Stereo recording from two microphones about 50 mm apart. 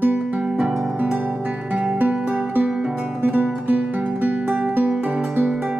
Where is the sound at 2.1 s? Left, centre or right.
Centre.